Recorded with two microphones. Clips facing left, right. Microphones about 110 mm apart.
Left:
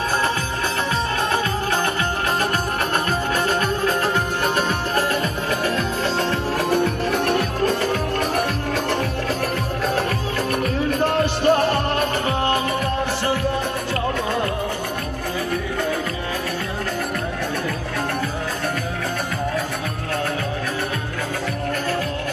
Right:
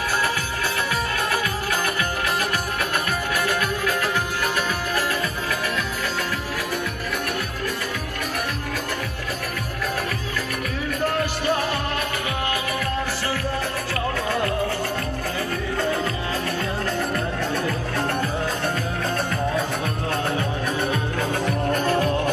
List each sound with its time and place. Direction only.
3.4 s music: 25° left (ahead or behind)
11.4 s music: 55° left (ahead or behind)
21.8 s music: 20° right (ahead or behind)